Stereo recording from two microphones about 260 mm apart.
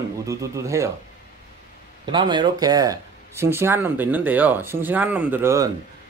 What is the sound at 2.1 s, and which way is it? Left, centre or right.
Speech, centre.